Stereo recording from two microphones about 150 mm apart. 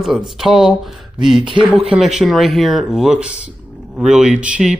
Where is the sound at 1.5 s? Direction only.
35° right (ahead or behind).